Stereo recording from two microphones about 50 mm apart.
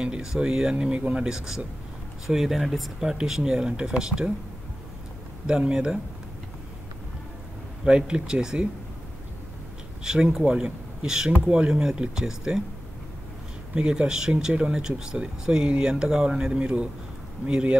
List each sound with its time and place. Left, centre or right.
0.0 s speech: centre
5.5 s speech: centre
7.8 s speech: centre
10.0 s speech: centre
13.7 s speech: centre